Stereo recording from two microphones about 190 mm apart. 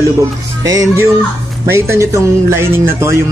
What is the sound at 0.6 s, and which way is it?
Speech, 15° right (ahead or behind).